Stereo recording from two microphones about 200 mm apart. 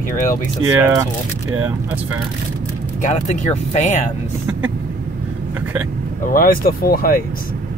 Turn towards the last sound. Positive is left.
turn(degrees=50)  # may be behind; listen again after turning